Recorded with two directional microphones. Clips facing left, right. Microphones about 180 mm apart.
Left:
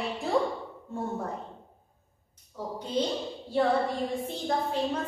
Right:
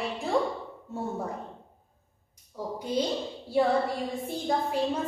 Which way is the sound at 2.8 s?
10° right (ahead or behind).